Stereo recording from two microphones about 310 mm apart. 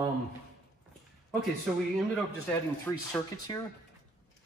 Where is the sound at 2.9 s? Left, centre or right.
Centre.